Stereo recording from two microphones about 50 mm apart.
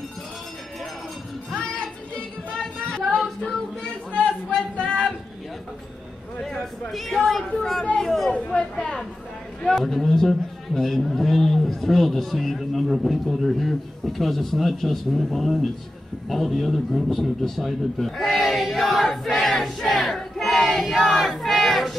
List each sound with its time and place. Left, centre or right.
1.6 s music: centre
4.1 s a sound: left
6.4 s a man's voice: centre
8.3 s speech: left
9.7 s a man's voice: centre
19.9 s battle cry: centre
20.8 s a man's voice: centre
21.2 s crowd: centre